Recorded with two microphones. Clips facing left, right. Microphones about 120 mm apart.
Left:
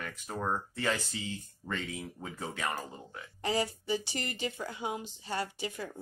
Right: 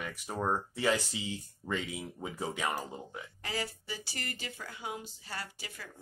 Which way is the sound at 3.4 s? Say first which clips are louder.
Left 8 dB; 25° left (ahead or behind).